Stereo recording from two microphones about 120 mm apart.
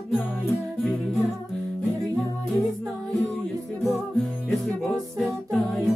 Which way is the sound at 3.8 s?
Centre (ahead or behind).